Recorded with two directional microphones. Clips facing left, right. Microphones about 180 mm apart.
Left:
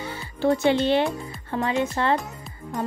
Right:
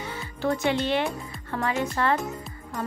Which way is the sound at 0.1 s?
30° left (ahead or behind).